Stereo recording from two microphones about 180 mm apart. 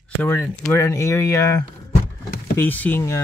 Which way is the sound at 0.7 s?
15° left (ahead or behind).